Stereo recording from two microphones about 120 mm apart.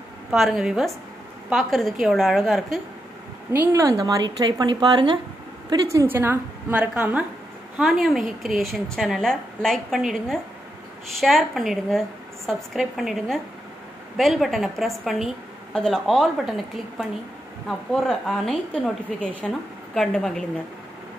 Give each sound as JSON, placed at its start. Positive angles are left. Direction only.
{"t": 0.3, "sound": "a woman's voice", "side_deg": -5}
{"t": 3.7, "sound": "a woman's voice", "side_deg": -30}
{"t": 6.0, "sound": "a woman's voice", "side_deg": -20}